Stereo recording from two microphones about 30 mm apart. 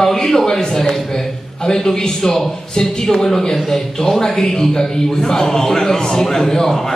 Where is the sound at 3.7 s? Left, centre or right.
Centre.